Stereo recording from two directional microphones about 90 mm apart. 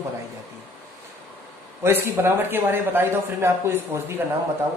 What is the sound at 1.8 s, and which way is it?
A man's voice, 25° right (ahead or behind).